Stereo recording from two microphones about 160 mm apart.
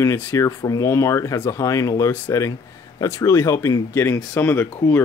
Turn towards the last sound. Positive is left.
turn(degrees=15)  # may be behind; listen again after turning